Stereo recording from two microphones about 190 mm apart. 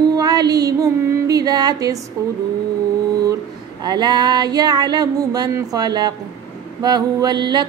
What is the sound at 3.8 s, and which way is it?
Female singing, 20° right (ahead or behind).